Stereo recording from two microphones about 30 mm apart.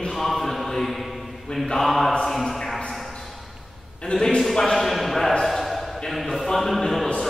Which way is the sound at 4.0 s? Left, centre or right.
Left.